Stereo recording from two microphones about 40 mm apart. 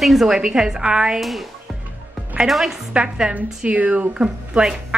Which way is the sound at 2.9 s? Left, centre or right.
Right.